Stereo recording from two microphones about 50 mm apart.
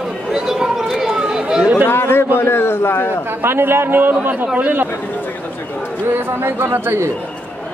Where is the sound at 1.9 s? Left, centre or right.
Left.